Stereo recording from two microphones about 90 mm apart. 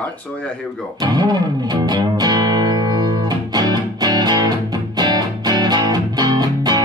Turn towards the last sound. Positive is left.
turn(degrees=-50)  # may be behind; listen again after turning